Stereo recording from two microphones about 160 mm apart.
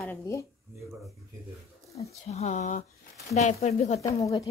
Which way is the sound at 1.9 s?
40° left (ahead or behind).